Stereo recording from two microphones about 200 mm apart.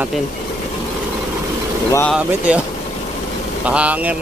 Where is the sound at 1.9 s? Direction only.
10° left (ahead or behind).